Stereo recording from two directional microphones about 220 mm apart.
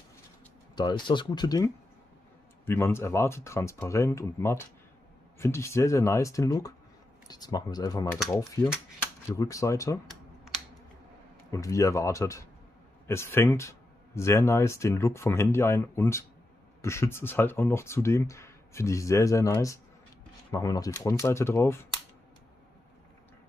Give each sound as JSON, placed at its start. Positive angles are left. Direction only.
{"t": 0.7, "sound": "speech", "side_deg": 20}
{"t": 11.5, "sound": "speech", "side_deg": 15}